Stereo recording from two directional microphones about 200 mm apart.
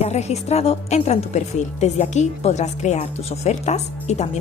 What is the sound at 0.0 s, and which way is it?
Speech, 35° left (ahead or behind).